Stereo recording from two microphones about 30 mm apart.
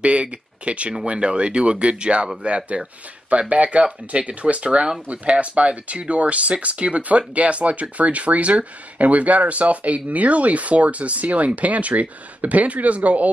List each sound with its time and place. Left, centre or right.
0.0 s speech: right
5.3 s speech: right
5.6 s speech: right